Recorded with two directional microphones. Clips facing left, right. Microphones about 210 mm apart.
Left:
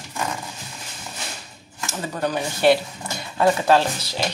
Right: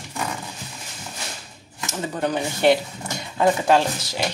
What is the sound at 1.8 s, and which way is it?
Speech, 20° right (ahead or behind).